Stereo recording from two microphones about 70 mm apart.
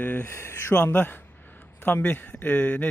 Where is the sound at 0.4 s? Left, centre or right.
Left.